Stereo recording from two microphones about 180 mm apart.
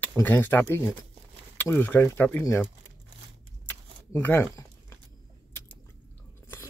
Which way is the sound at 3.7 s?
10° left (ahead or behind).